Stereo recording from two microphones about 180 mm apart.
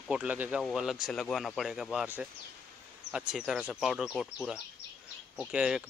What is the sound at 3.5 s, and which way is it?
Speech, 5° right (ahead or behind).